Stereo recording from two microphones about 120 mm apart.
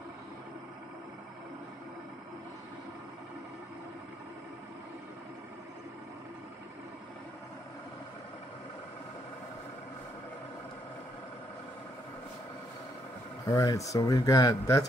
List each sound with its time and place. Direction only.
13.5 s speech: 30° left (ahead or behind)